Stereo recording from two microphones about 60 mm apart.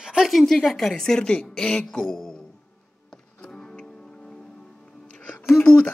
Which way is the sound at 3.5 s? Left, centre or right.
Centre.